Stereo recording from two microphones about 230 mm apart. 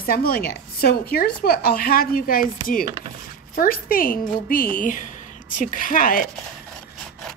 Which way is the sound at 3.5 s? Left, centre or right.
Left.